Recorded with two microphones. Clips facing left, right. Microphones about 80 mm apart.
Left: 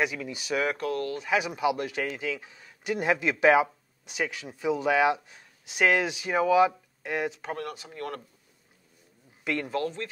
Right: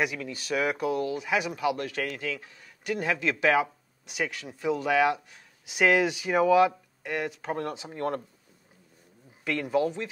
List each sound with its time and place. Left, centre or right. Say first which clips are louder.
0.0 s speech: even; centre
0.7 s speech: right 2 dB; centre
1.3 s speech: left 3 dB; centre
4.1 s speech: even; centre
7.5 s speech: right 3 dB; right
9.4 s a man's voice: even; centre
9.7 s speech: right 4 dB; centre